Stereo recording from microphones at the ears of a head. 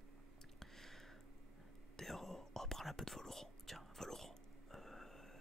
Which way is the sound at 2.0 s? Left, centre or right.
Centre.